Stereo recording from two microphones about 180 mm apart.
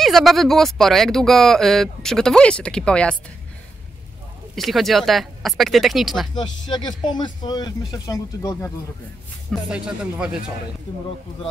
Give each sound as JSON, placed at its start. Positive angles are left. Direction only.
{"t": 0.0, "sound": "speech", "side_deg": 0}
{"t": 4.6, "sound": "speech", "side_deg": 0}
{"t": 6.6, "sound": "speech", "side_deg": 25}
{"t": 9.5, "sound": "speech", "side_deg": -5}